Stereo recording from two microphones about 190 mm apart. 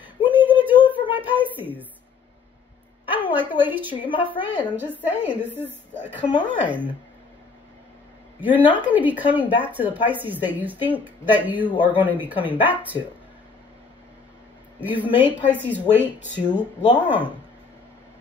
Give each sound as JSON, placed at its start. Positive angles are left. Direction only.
{"t": 0.0, "sound": "a sound", "side_deg": -10}
{"t": 3.1, "sound": "a sound", "side_deg": -10}
{"t": 3.9, "sound": "a woman's voice", "side_deg": 25}
{"t": 4.7, "sound": "a woman's voice", "side_deg": -10}
{"t": 8.4, "sound": "a woman's voice", "side_deg": -10}
{"t": 14.8, "sound": "a woman's voice", "side_deg": -10}